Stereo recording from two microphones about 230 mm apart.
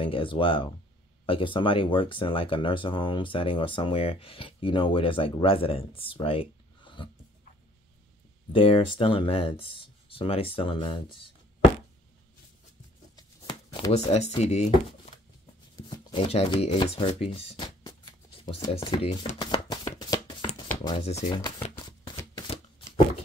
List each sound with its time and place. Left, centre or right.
0.0 s speech: left
8.5 s speech: left
13.1 s shuffling cards: left
15.7 s speech: centre
18.4 s shuffling cards: left
20.8 s speech: left
21.6 s shuffling cards: left